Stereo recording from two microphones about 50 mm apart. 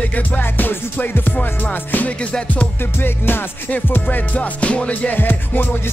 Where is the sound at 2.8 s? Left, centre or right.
Left.